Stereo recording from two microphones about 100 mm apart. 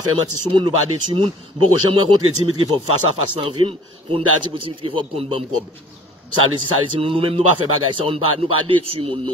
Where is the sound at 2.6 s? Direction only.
55° right (ahead or behind).